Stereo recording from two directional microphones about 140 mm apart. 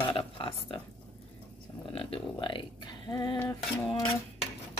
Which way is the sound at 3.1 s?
20° left (ahead or behind).